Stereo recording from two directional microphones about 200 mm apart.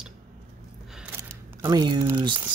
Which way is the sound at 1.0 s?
10° right (ahead or behind).